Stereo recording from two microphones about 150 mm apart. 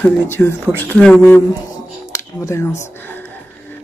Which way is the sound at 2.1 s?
20° left (ahead or behind).